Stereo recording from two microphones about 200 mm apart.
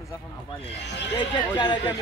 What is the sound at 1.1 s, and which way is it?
Speech, 20° left (ahead or behind).